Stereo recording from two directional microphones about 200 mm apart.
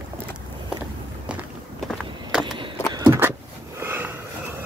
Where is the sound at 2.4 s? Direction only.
25° right (ahead or behind).